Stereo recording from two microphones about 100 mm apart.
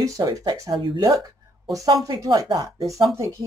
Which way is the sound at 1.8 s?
35° right (ahead or behind).